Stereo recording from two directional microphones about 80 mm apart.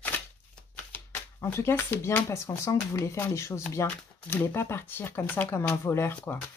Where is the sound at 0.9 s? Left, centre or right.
Left.